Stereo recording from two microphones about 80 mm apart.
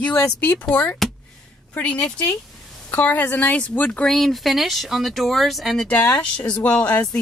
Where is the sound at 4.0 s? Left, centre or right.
Centre.